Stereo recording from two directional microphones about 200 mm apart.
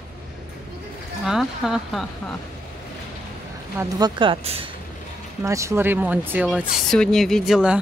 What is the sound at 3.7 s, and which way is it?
Speech, 20° right (ahead or behind).